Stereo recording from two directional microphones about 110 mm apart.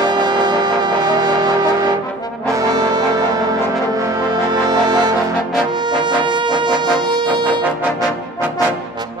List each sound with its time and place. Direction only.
0.0 s music: 40° right (ahead or behind)
2.5 s brass instrument: 35° right (ahead or behind)
3.9 s music: 35° right (ahead or behind)